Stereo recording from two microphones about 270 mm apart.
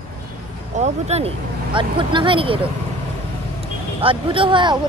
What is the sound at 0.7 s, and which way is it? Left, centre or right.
Speech, right.